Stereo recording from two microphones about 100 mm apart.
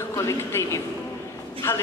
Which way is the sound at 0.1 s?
30° left (ahead or behind).